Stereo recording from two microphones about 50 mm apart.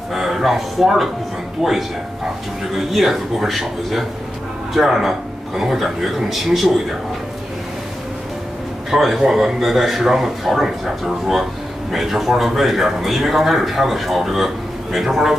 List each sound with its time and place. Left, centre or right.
0.1 s a man's voice: centre
8.9 s a man's voice: centre